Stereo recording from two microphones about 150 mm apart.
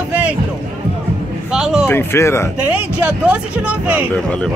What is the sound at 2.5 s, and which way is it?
Speech, 10° right (ahead or behind).